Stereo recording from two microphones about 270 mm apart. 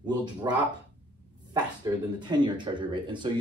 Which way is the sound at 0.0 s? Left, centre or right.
Centre.